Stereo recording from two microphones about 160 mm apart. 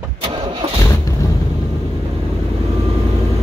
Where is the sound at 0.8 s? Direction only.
20° left (ahead or behind).